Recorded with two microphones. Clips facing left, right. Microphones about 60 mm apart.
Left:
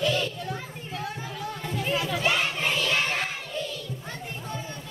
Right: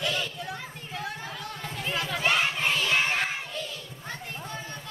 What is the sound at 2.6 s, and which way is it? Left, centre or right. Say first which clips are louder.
Child singing: even; centre.